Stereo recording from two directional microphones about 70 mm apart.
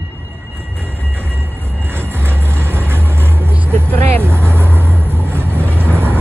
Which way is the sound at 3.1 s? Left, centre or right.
Right.